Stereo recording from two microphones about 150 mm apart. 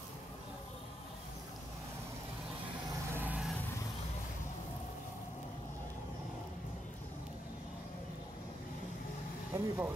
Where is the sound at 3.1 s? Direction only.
10° right (ahead or behind).